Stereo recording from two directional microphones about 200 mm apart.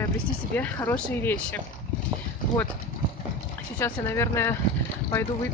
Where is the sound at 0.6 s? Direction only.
10° left (ahead or behind).